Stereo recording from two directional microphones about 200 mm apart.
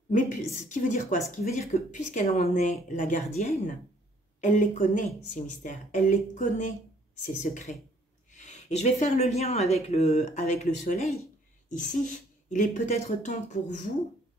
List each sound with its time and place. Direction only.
0.7 s speech: 40° left (ahead or behind)